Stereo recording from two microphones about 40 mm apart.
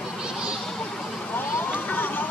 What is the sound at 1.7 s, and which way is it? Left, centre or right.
Vehicle, left.